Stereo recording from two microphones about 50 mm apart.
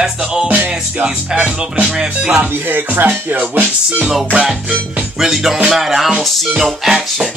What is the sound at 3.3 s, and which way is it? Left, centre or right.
Music, right.